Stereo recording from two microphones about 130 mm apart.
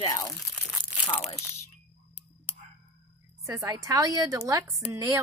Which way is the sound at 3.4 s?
25° right (ahead or behind).